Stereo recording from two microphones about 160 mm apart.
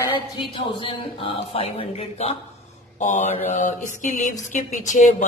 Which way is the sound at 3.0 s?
50° left (ahead or behind).